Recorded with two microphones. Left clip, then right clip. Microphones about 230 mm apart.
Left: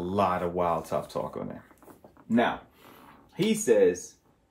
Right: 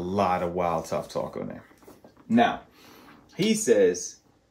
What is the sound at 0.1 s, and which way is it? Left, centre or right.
Speech, centre.